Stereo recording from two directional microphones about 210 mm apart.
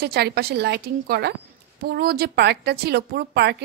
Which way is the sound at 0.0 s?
50° right (ahead or behind).